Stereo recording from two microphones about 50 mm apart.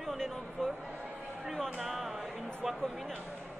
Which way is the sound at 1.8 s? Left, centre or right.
Centre.